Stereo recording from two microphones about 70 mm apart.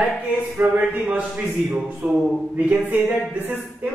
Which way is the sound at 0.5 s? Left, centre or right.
Right.